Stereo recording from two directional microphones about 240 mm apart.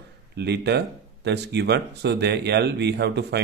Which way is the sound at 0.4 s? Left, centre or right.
Right.